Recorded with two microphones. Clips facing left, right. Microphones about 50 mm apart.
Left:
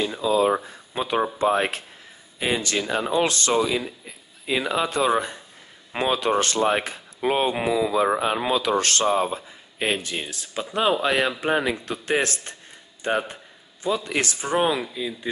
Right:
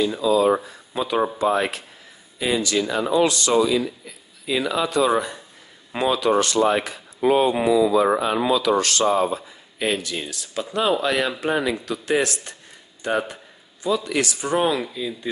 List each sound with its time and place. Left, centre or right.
0.2 s speech: left
8.5 s speech: left
14.6 s speech: centre